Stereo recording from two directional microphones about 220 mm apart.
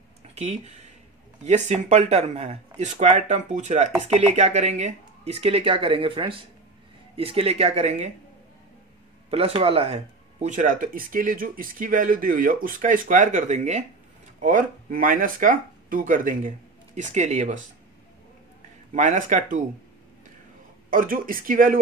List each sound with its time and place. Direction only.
0.3 s a sound: 30° right (ahead or behind)
1.4 s speech: 30° right (ahead or behind)
9.3 s speech: 25° right (ahead or behind)
18.9 s speech: 35° right (ahead or behind)
20.9 s speech: 40° right (ahead or behind)